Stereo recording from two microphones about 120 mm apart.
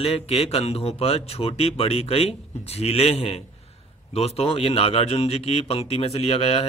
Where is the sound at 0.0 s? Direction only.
50° left (ahead or behind).